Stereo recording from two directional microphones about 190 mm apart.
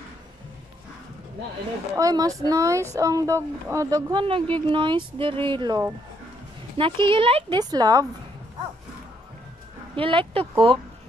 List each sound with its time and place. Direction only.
2.0 s speech: 20° right (ahead or behind)
9.9 s speech: 30° right (ahead or behind)